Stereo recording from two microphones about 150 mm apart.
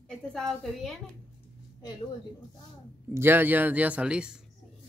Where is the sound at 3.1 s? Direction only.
15° right (ahead or behind).